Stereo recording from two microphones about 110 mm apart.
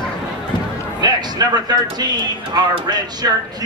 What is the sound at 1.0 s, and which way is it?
A man's voice, 40° right (ahead or behind).